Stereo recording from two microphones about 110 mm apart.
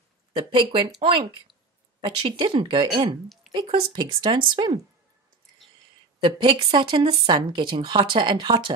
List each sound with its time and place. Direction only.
0.4 s speech: 50° right (ahead or behind)
3.4 s a sound: centre (ahead or behind)
3.9 s speech: 40° right (ahead or behind)
6.2 s speech: 45° right (ahead or behind)